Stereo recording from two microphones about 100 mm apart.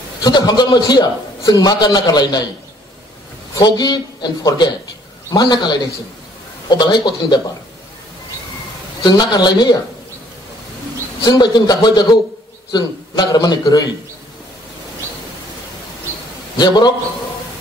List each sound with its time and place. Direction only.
0.2 s a man's voice: 45° left (ahead or behind)
3.5 s a man's voice: 45° left (ahead or behind)
9.0 s a man's voice: 45° left (ahead or behind)
11.2 s a man's voice: 45° left (ahead or behind)
16.5 s a man's voice: 45° left (ahead or behind)